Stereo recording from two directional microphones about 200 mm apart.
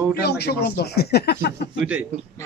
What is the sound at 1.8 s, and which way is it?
Speech, 5° right (ahead or behind).